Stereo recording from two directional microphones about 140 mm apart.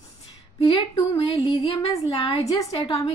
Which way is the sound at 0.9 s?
20° left (ahead or behind).